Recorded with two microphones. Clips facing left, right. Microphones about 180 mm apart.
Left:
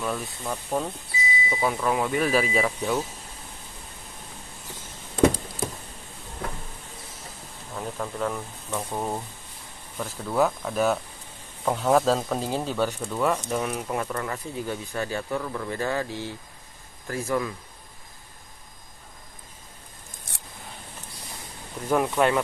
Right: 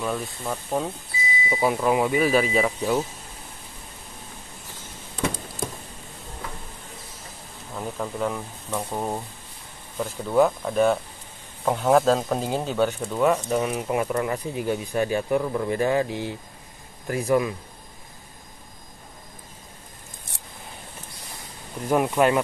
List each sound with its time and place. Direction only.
0.0 s speech: centre (ahead or behind)
7.7 s speech: 5° right (ahead or behind)
21.8 s speech: 10° right (ahead or behind)